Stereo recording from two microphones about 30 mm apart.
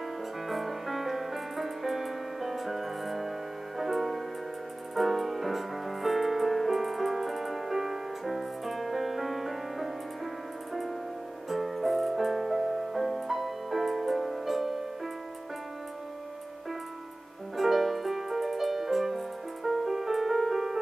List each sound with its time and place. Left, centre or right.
0.5 s music: centre
17.6 s music: centre